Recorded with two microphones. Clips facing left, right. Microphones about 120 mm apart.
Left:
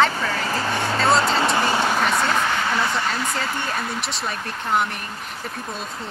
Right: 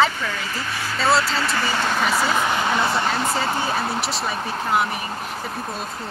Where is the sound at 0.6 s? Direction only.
30° left (ahead or behind).